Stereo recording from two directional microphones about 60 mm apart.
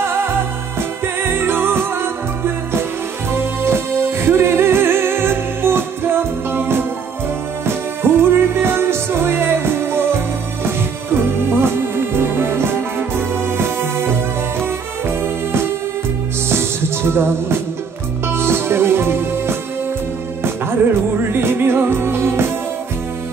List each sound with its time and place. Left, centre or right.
0.0 s music: right
11.5 s music: right
21.3 s music: right